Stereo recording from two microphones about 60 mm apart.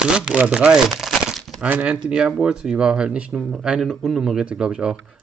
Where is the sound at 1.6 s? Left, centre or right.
Centre.